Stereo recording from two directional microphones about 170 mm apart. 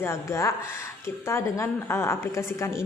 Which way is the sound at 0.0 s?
15° left (ahead or behind).